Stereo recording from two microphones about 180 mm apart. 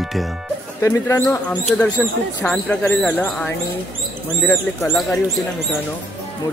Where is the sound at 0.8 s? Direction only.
15° left (ahead or behind).